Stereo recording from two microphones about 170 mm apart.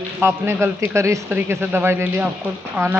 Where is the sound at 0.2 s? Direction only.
15° right (ahead or behind).